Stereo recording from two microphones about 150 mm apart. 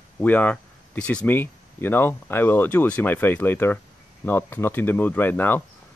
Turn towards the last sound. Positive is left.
turn(degrees=15)  # may be behind; listen again after turning